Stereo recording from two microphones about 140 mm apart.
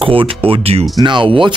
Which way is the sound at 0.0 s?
40° right (ahead or behind).